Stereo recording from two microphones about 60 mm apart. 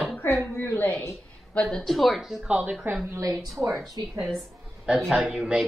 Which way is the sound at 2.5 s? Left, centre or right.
Right.